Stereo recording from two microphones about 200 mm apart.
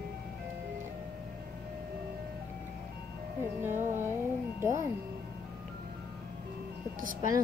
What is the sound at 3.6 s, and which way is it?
Music, 10° right (ahead or behind).